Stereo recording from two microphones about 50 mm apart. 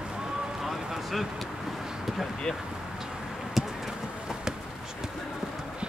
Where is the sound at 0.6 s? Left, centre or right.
Centre.